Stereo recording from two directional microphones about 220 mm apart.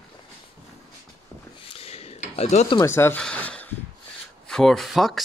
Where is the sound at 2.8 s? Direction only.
10° left (ahead or behind).